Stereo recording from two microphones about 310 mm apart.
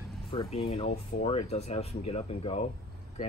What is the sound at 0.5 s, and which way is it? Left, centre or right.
Speech, centre.